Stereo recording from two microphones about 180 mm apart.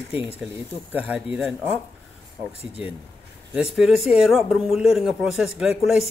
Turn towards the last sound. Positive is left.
turn(degrees=-5)  # may be behind; listen again after turning